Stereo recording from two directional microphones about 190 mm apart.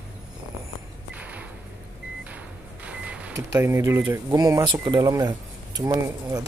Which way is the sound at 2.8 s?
5° right (ahead or behind).